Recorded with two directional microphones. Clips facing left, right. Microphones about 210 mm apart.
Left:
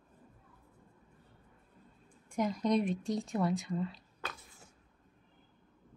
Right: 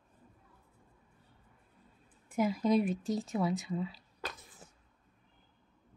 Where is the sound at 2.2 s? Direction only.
5° right (ahead or behind).